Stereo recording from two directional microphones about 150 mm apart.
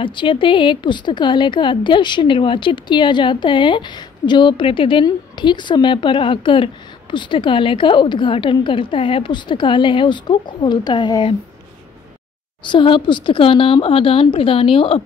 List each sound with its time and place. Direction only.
0.0 s a woman's voice: 35° left (ahead or behind)
12.6 s a woman's voice: 35° left (ahead or behind)